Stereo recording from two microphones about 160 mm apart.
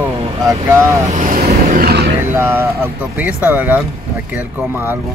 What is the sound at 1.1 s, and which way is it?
Speech, 55° right (ahead or behind).